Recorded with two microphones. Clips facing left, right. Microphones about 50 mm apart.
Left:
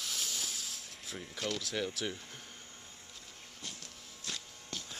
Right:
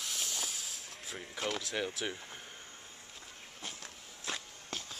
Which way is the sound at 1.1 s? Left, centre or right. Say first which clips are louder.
Right 1 dB; centre.